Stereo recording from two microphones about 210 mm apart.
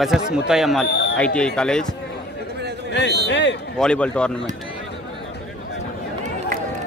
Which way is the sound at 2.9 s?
55° left (ahead or behind).